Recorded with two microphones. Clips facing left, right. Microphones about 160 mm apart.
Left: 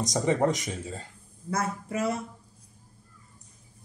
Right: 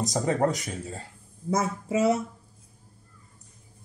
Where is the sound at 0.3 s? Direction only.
Centre (ahead or behind).